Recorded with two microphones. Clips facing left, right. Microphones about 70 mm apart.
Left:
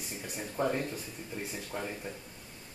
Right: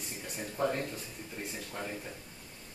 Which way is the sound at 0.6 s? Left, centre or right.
Centre.